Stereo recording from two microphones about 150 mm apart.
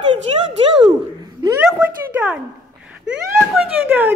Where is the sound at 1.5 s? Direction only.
5° right (ahead or behind).